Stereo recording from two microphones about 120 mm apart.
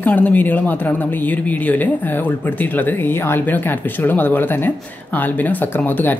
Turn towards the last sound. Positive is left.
turn(degrees=15)  # may be behind; listen again after turning